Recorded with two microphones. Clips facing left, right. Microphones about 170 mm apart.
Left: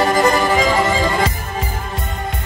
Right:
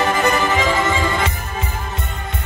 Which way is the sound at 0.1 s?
35° left (ahead or behind).